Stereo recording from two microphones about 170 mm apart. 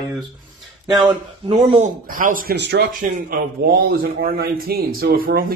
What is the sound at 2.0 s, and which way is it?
Speech, 55° right (ahead or behind).